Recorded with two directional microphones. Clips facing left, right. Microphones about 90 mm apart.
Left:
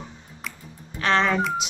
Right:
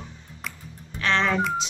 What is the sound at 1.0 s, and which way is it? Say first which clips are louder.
Speech: left 2 dB; 30° left (ahead or behind).